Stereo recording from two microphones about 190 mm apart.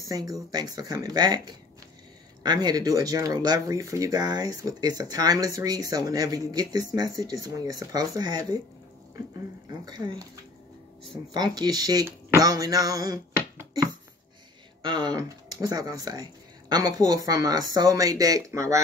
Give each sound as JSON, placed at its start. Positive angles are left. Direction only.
{"t": 0.0, "sound": "speech", "side_deg": -20}
{"t": 9.7, "sound": "speech", "side_deg": -20}
{"t": 11.3, "sound": "speech", "side_deg": -20}